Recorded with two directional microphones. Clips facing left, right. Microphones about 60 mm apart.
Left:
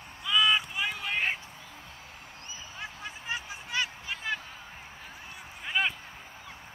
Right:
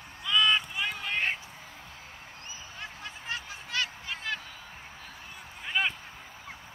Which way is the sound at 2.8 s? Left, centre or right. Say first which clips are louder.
Left 2 dB; centre.